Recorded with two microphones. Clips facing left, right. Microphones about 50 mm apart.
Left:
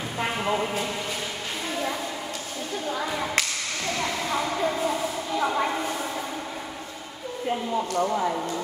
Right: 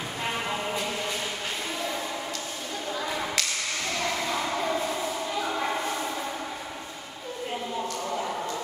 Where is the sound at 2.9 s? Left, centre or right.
Centre.